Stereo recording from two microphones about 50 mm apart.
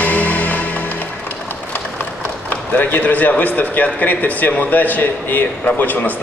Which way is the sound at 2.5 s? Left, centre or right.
Left.